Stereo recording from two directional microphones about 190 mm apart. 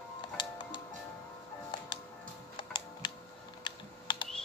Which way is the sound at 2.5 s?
25° left (ahead or behind).